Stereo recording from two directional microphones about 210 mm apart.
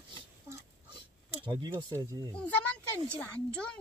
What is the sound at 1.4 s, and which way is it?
Speech, 20° right (ahead or behind).